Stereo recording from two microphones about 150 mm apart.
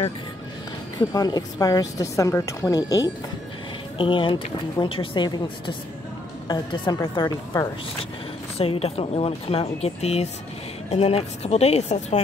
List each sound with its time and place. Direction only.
0.9 s a woman's voice: 25° left (ahead or behind)
4.0 s a woman's voice: 35° left (ahead or behind)
8.5 s speech: 40° left (ahead or behind)